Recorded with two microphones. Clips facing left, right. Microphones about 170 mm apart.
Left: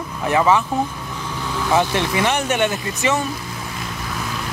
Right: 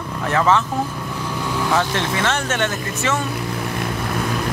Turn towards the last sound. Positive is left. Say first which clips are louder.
# left 2 dB
turn(degrees=15)  # may be behind; listen again after turning